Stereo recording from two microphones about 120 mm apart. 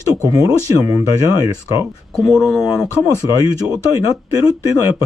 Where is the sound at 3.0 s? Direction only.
30° right (ahead or behind).